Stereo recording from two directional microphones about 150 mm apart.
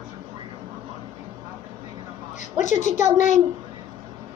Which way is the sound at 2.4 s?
55° left (ahead or behind).